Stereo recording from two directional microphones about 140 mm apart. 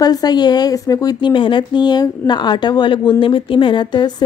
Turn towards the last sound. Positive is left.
turn(degrees=35)  # may be behind; listen again after turning